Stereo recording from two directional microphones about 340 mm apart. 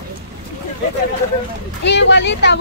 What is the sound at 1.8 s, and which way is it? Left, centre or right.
Speech, left.